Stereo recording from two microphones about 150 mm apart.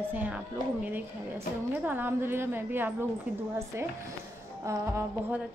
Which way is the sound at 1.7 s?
10° right (ahead or behind).